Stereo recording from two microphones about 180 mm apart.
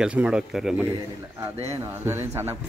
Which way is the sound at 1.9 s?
15° right (ahead or behind).